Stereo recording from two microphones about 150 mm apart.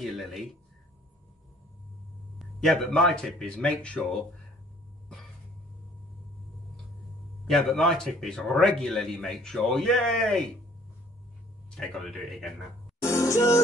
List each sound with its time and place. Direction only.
0.0 s a man's voice: centre (ahead or behind)
2.3 s a man's voice: centre (ahead or behind)
7.4 s a man's voice: centre (ahead or behind)
11.7 s a man's voice: 5° left (ahead or behind)
13.0 s music: 20° left (ahead or behind)